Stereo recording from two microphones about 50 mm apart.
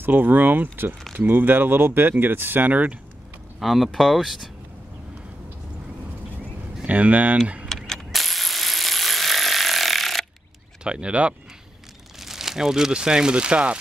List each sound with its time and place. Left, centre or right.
0.0 s speech: right
3.5 s speech: centre
6.8 s speech: right
7.6 s a sound: centre
10.8 s speech: right
12.2 s speech: centre; by 13.7 s right